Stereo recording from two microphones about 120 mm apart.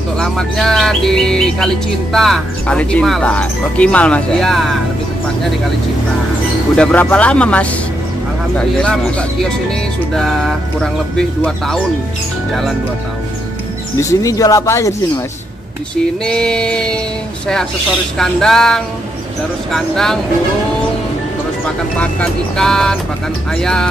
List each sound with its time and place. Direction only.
0.2 s speech: 5° left (ahead or behind)
6.8 s speech: 10° left (ahead or behind)
10.1 s speech: 5° left (ahead or behind)
13.9 s speech: 25° left (ahead or behind)
16.3 s speech: 5° left (ahead or behind)
18.1 s speech: 5° left (ahead or behind)
21.9 s speech: 10° left (ahead or behind)